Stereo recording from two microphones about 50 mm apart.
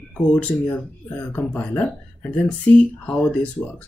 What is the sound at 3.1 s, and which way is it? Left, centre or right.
Speech, left.